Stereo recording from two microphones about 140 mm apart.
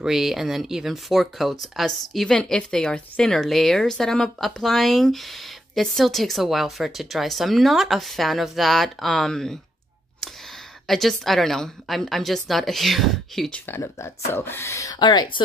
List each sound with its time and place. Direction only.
0.0 s speech: centre (ahead or behind)
10.9 s speech: centre (ahead or behind)
13.7 s speech: 15° left (ahead or behind); by 15.4 s 35° left (ahead or behind)